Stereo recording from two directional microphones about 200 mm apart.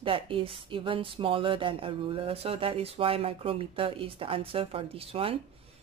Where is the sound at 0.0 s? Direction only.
25° right (ahead or behind).